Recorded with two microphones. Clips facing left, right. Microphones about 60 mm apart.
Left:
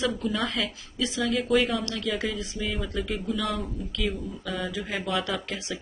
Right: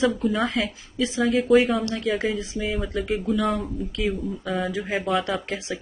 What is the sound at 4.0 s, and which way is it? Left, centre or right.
Speech, right.